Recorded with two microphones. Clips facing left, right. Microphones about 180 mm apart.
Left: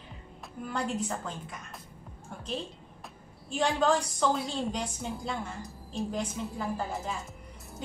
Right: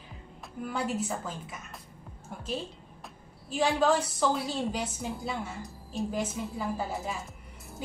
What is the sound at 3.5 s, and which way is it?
A woman's voice, 5° right (ahead or behind).